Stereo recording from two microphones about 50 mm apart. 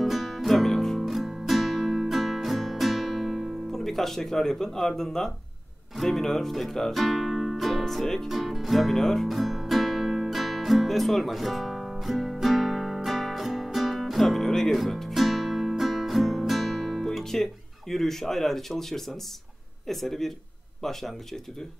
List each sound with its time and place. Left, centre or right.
0.0 s music: centre
5.9 s speech: centre
8.3 s music: centre
19.9 s speech: centre